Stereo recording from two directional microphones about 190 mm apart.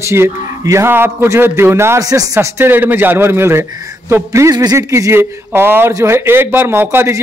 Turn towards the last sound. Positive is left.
turn(degrees=-10)  # may be behind; listen again after turning